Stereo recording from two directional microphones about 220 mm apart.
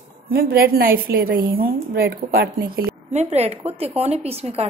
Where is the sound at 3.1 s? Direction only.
30° right (ahead or behind).